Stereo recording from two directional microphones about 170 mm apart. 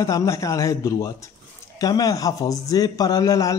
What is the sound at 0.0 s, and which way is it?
A man's voice, 20° left (ahead or behind).